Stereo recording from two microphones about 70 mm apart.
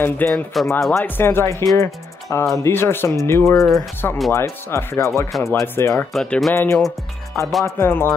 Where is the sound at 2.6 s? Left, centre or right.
Left.